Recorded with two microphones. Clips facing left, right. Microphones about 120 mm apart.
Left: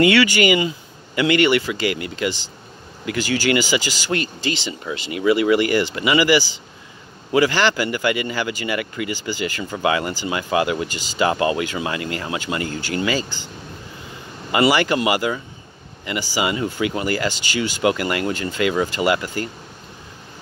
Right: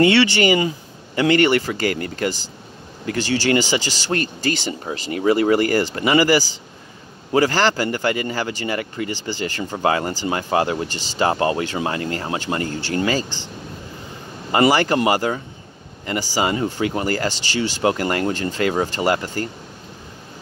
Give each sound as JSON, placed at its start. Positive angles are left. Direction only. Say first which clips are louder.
{"t": 0.0, "sound": "speech", "louder": "even", "side_deg": -30}
{"t": 14.5, "sound": "speech", "louder": "right 1 dB", "side_deg": -40}